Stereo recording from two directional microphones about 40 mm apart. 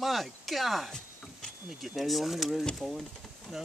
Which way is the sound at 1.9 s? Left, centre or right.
Centre.